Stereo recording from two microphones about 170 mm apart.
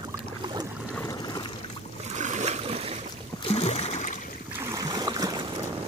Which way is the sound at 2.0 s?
40° right (ahead or behind).